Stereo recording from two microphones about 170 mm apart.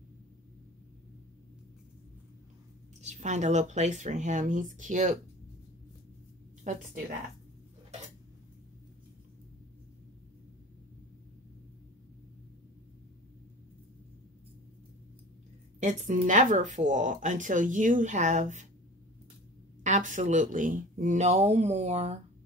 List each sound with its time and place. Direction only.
3.0 s speech: 45° right (ahead or behind)
6.6 s speech: 50° right (ahead or behind)
15.8 s speech: 45° right (ahead or behind)
19.8 s speech: 45° right (ahead or behind)